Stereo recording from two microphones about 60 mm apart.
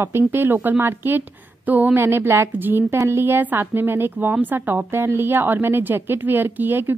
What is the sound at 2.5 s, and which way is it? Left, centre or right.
Speech, right.